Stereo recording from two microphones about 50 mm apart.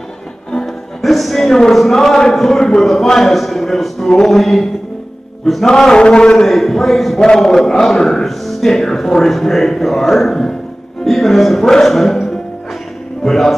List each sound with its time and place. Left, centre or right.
0.5 s speech: centre
5.7 s a man's voice: centre
6.4 s a man's voice: centre